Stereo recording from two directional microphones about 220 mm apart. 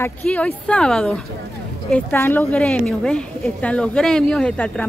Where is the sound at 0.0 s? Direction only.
5° left (ahead or behind).